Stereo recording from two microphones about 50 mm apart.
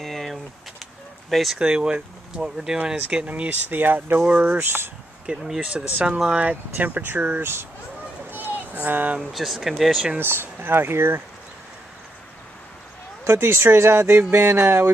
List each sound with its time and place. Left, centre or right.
0.0 s a sound: centre
1.3 s speech: centre
1.6 s speech: centre
3.3 s speech: right
3.6 s speech: right
4.3 s speech: right
4.6 s speech: right
5.2 s speech: centre
6.3 s speech: right
8.3 s a sound: right
9.3 s speech: centre
10.1 s speech: right
13.2 s speech: right